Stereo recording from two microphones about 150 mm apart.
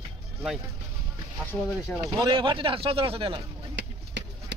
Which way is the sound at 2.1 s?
35° right (ahead or behind).